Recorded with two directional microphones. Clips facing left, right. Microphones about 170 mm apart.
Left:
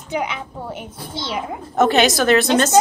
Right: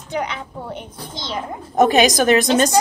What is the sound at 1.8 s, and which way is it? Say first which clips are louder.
Speech: right 1 dB; 15° right (ahead or behind).